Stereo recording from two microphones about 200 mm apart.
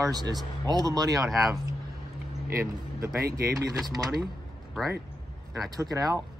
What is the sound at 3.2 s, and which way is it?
Speech, 50° right (ahead or behind).